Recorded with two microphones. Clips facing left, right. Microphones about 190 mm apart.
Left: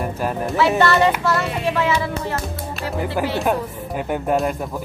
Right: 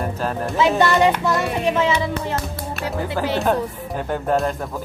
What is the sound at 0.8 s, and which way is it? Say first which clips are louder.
Speech: even; 15° right (ahead or behind).